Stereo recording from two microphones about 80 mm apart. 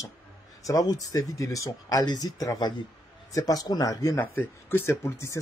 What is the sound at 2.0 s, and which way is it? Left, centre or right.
Speech, left.